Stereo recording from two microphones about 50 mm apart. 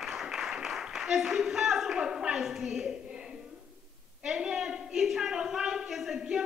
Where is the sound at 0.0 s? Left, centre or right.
Centre.